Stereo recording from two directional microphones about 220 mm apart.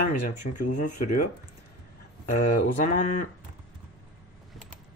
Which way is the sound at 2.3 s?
30° left (ahead or behind).